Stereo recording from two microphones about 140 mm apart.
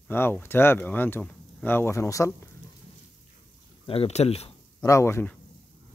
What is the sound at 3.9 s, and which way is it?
Speech, 45° left (ahead or behind).